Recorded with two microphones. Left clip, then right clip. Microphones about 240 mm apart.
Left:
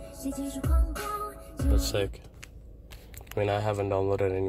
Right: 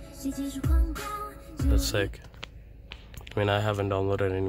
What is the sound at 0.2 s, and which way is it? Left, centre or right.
Music, centre.